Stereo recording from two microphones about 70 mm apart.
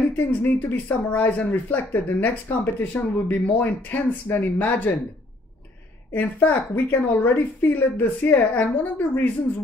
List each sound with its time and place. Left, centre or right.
0.3 s speech: left
6.1 s speech: left